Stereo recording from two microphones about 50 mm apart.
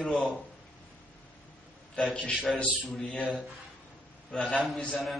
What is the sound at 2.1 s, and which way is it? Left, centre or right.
Speech, left.